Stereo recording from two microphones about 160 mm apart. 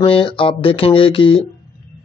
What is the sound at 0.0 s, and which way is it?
Speech, 35° left (ahead or behind).